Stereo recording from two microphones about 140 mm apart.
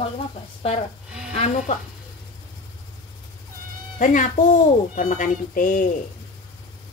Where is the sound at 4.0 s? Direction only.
65° left (ahead or behind).